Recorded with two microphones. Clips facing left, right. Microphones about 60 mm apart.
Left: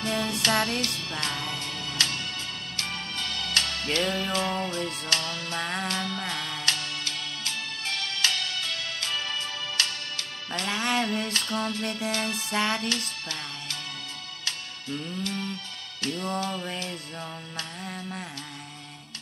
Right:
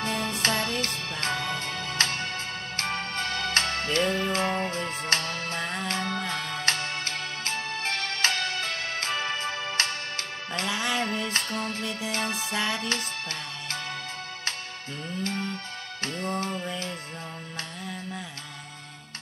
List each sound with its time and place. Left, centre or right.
0.0 s music: right
5.6 s music: left
5.9 s music: right
10.7 s music: left
11.3 s music: right
11.8 s music: left
12.1 s music: right
12.5 s music: left
12.8 s music: right